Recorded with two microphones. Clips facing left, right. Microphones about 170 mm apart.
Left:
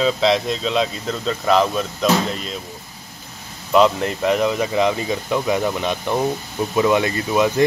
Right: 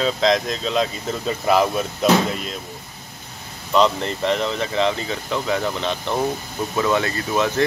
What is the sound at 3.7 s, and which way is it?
Speech, 10° left (ahead or behind).